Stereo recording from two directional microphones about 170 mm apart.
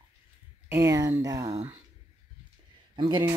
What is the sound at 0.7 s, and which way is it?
Speech, 20° right (ahead or behind).